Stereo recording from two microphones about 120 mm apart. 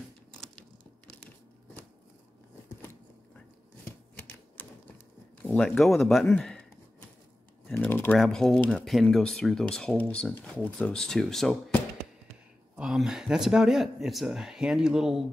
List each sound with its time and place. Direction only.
0.4 s a sound: 5° left (ahead or behind)
4.6 s a sound: 15° left (ahead or behind)
5.6 s speech: 5° left (ahead or behind)
7.7 s speech: 15° left (ahead or behind)
8.2 s speech: 5° left (ahead or behind)
12.7 s speech: 5° right (ahead or behind)